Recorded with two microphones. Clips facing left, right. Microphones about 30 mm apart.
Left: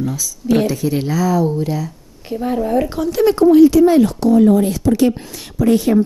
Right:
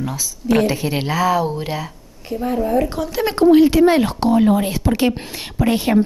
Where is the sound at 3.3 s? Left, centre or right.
Right.